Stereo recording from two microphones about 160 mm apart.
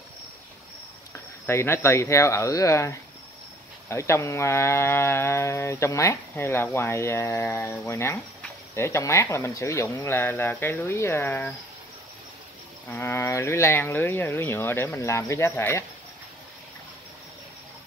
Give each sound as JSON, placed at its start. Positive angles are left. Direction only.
{"t": 1.4, "sound": "speech", "side_deg": 15}
{"t": 12.9, "sound": "speech", "side_deg": 15}